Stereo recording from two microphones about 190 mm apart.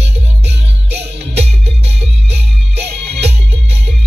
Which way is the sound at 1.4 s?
35° right (ahead or behind).